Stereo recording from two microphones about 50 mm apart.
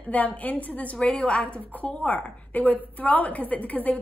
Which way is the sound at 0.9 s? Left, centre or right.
Left.